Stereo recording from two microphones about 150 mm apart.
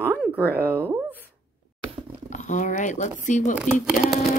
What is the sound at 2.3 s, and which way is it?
Speech, 55° left (ahead or behind).